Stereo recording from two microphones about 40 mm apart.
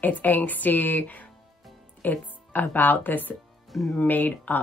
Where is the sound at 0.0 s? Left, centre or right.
Left.